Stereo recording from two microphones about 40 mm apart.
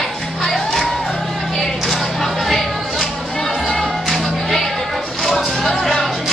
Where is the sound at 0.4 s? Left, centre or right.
Centre.